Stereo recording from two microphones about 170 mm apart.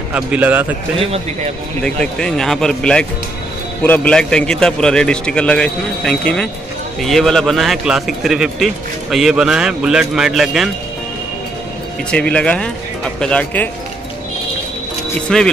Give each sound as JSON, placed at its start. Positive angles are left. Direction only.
{"t": 0.1, "sound": "a man's voice", "side_deg": -10}
{"t": 0.9, "sound": "a man's voice", "side_deg": -35}
{"t": 1.8, "sound": "a man's voice", "side_deg": 5}
{"t": 12.1, "sound": "speech", "side_deg": 5}
{"t": 15.2, "sound": "a man's voice", "side_deg": 5}